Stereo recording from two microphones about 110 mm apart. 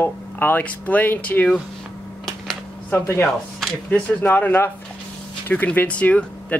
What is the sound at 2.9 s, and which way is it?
Speech, 20° left (ahead or behind).